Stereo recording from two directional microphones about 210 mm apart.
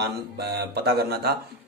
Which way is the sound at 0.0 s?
55° right (ahead or behind).